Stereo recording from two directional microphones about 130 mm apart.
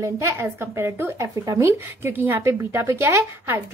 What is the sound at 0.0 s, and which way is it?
A woman's voice, 20° right (ahead or behind).